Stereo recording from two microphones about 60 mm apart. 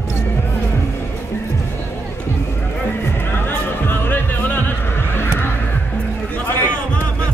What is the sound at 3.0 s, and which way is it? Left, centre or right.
Music, left.